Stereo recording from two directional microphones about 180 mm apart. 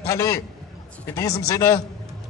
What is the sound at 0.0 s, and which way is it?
A man's voice, 15° left (ahead or behind).